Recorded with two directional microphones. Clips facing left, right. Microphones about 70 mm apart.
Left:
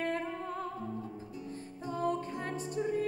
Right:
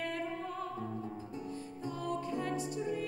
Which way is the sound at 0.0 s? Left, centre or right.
Left.